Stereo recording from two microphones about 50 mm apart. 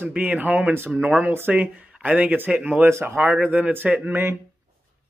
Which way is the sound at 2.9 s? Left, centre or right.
Right.